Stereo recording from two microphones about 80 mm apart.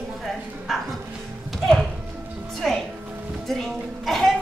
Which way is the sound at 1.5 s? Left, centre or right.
Centre.